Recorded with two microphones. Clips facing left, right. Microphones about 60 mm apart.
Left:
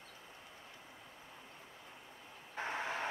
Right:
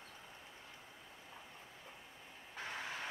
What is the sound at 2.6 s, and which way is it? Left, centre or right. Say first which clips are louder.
Vehicle: left 6 dB; left.